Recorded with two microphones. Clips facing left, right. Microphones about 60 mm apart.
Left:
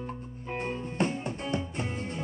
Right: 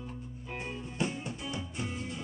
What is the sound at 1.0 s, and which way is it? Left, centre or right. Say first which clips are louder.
Music: left 4 dB; left.